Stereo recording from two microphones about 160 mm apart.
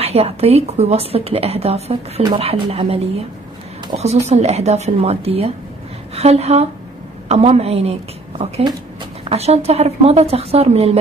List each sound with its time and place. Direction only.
0.0 s a woman's voice: 40° right (ahead or behind)
4.0 s a woman's voice: 40° right (ahead or behind)